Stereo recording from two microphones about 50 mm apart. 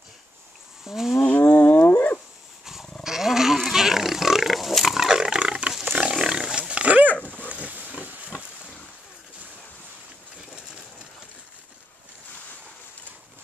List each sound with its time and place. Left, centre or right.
0.8 s cattle: centre
1.4 s a sound: left
1.9 s dog: left
2.6 s dog: centre
3.0 s pig: centre
6.1 s wild animals: centre; by 7.1 s right
7.1 s dog: left
7.4 s pig: right